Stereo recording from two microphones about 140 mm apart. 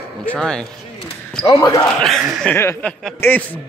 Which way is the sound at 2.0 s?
5° left (ahead or behind).